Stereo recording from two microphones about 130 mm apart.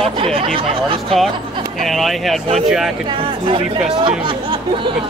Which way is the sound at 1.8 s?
Centre (ahead or behind).